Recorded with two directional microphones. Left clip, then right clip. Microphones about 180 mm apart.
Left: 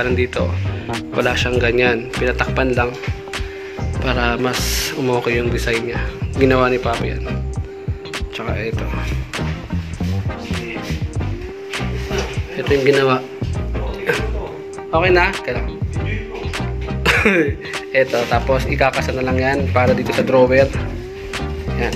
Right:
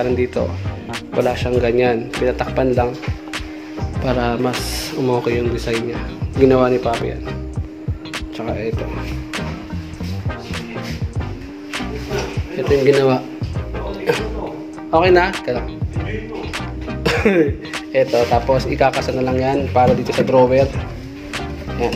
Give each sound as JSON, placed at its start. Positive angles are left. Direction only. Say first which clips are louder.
{"t": 0.0, "sound": "speech", "louder": "even", "side_deg": -5}
{"t": 4.0, "sound": "speech", "louder": "even", "side_deg": -10}
{"t": 8.1, "sound": "music", "louder": "right 1 dB", "side_deg": 0}
{"t": 12.5, "sound": "speech", "louder": "right 1 dB", "side_deg": -5}
{"t": 14.9, "sound": "speech", "louder": "right 2 dB", "side_deg": -30}
{"t": 17.0, "sound": "speech", "louder": "left 1 dB", "side_deg": -10}
{"t": 21.3, "sound": "music", "louder": "even", "side_deg": -5}